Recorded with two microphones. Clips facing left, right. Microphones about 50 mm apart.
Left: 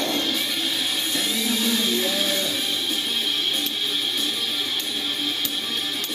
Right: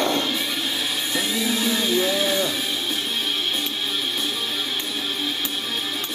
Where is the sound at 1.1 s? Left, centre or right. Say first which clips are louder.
Right 3 dB; centre.